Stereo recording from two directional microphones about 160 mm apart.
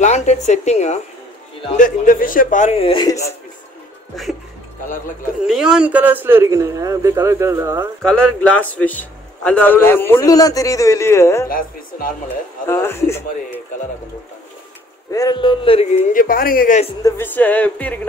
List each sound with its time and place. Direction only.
0.0 s a man's voice: 45° left (ahead or behind)
1.8 s a man's voice: 60° left (ahead or behind); by 3.3 s 20° left (ahead or behind)
4.8 s speech: 55° left (ahead or behind)
5.5 s a man's voice: 5° right (ahead or behind)
8.0 s a man's voice: 5° left (ahead or behind)
11.4 s speech: 65° left (ahead or behind)
12.6 s a man's voice: 15° left (ahead or behind)
15.0 s speech: 20° left (ahead or behind); by 16.0 s 35° left (ahead or behind)
16.1 s speech: 60° left (ahead or behind)
17.0 s a man's voice: 15° left (ahead or behind)